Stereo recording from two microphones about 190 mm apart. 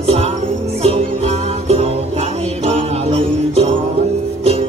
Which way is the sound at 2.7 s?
35° right (ahead or behind).